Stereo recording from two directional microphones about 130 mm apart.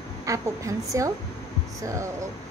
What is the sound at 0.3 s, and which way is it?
Speech, 25° right (ahead or behind).